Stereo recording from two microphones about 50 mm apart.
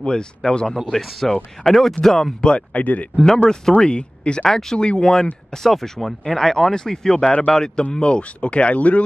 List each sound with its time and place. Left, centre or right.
0.0 s speech: centre
2.4 s speech: left
3.8 s speech: centre
4.5 s speech: centre
4.7 s speech: centre